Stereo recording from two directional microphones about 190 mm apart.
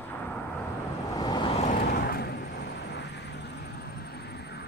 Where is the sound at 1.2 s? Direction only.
20° left (ahead or behind).